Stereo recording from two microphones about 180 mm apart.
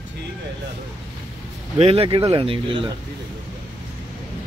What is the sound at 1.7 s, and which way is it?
Speech, 35° right (ahead or behind).